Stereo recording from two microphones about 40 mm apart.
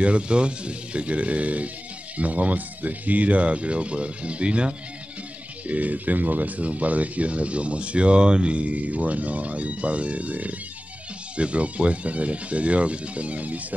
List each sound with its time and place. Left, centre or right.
0.0 s speech: right
5.7 s speech: right